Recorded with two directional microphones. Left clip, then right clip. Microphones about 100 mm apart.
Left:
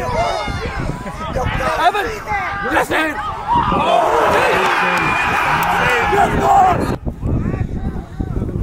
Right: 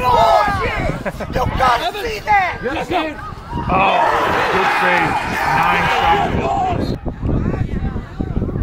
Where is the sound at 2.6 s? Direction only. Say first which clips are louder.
Left 3 dB; 30° left (ahead or behind).